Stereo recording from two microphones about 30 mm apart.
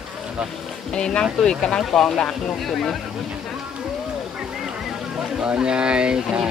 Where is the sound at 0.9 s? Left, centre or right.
Left.